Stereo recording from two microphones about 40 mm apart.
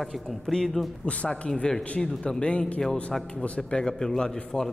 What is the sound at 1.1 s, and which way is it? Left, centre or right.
Speech, left.